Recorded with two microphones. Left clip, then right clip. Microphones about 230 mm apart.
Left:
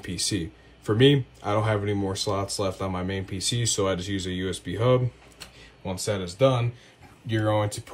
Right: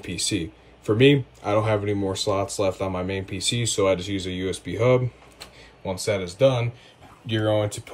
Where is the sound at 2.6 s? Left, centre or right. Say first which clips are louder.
Right 4 dB; centre.